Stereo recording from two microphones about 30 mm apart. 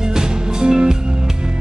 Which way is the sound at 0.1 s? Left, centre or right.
Right.